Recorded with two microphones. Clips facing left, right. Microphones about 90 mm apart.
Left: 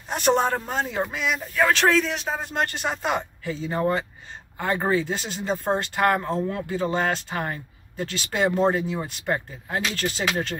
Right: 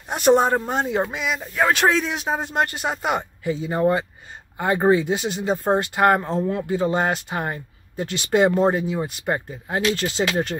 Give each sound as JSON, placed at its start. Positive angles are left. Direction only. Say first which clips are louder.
{"t": 0.1, "sound": "speech", "louder": "right 4 dB", "side_deg": -15}